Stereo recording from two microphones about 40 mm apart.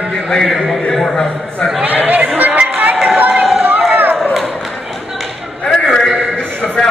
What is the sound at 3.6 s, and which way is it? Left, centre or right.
Run, right.